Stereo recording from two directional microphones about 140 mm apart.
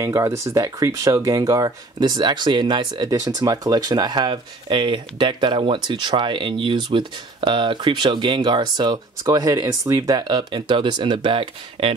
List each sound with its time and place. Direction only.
0.0 s speech: 20° right (ahead or behind)